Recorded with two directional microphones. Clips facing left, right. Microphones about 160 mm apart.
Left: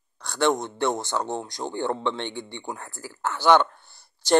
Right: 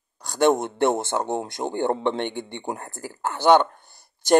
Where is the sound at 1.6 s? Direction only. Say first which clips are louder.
Right 4 dB; 30° right (ahead or behind).